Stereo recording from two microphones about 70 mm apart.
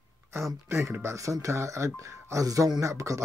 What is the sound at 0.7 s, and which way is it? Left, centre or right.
Speech, right.